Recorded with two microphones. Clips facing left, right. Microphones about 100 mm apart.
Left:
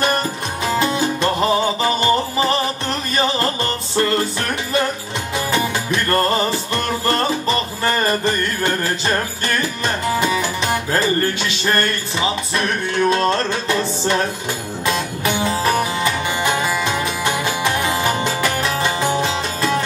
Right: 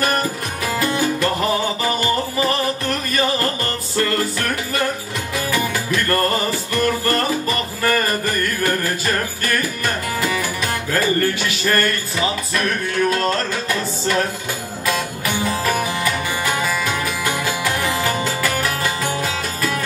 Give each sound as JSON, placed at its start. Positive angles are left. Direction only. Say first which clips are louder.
{"t": 0.0, "sound": "music", "louder": "left 1 dB", "side_deg": 25}